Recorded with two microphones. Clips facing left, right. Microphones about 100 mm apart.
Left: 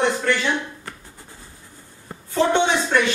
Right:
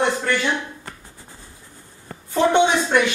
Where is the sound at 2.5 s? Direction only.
15° right (ahead or behind).